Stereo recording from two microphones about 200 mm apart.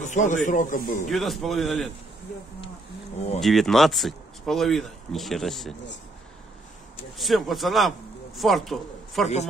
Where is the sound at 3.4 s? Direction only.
Centre (ahead or behind).